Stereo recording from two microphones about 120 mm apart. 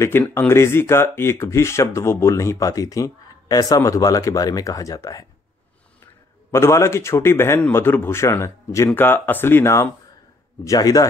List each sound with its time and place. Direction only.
0.3 s speech: 20° left (ahead or behind)
6.5 s speech: 25° left (ahead or behind)